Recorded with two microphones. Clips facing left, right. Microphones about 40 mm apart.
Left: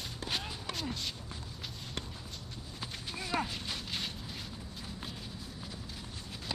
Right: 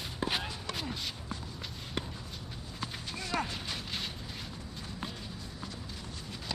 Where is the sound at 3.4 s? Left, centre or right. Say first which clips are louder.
Right 1 dB; centre.